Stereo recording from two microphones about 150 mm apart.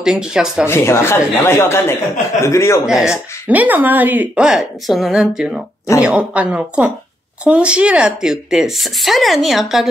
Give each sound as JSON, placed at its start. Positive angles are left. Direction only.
{"t": 0.0, "sound": "speech", "side_deg": -5}
{"t": 0.7, "sound": "a man's voice", "side_deg": 15}
{"t": 2.9, "sound": "speech", "side_deg": -5}